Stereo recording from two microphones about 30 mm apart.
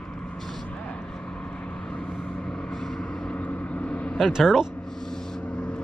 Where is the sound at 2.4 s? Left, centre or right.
Left.